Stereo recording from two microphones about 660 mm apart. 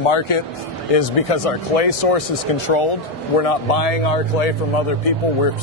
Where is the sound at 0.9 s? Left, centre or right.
Left.